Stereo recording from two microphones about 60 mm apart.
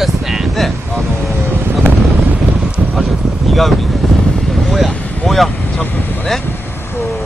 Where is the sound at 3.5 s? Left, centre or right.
Centre.